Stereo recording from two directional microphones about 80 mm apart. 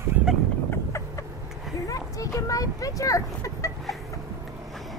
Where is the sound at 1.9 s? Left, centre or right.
Left.